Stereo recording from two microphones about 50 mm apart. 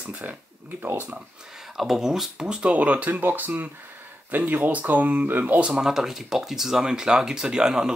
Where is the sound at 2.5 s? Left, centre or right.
Right.